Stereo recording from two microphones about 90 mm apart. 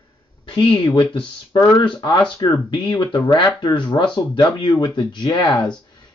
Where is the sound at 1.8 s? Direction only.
65° left (ahead or behind).